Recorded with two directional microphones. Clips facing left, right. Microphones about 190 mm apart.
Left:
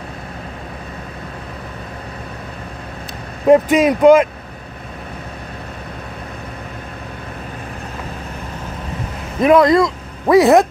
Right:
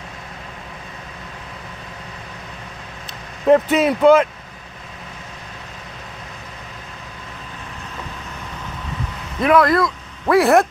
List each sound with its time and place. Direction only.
3.4 s speech: 10° left (ahead or behind)
9.4 s a man's voice: 20° left (ahead or behind)